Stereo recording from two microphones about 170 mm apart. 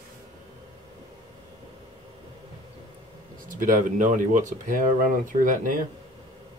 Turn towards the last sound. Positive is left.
turn(degrees=-50)  # may be behind; listen again after turning